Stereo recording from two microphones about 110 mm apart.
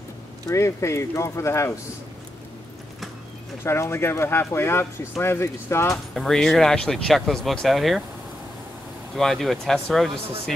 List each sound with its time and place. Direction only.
0.5 s speech: 25° left (ahead or behind)
3.6 s speech: 25° left (ahead or behind)
6.1 s speech: 5° left (ahead or behind)
9.1 s speech: centre (ahead or behind)